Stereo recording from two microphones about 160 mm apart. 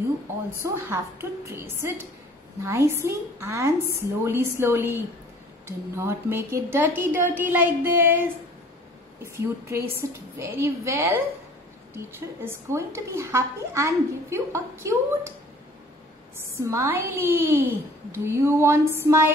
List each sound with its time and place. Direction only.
0.6 s a woman's voice: 15° right (ahead or behind)
16.5 s a woman's voice: 15° right (ahead or behind)